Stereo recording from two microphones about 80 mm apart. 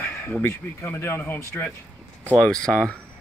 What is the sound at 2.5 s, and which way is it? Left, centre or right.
Speech, centre.